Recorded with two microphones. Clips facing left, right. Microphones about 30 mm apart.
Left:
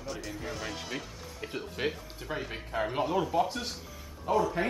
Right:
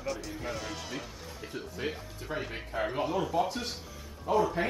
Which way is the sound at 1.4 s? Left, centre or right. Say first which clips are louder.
Left 4 dB; left.